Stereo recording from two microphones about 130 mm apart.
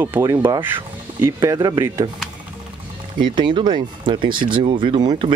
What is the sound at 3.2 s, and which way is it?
Speech, 40° right (ahead or behind).